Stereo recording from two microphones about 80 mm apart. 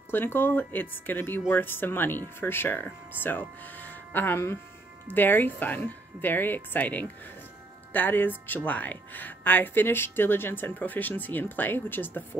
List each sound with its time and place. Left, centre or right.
0.1 s speech: left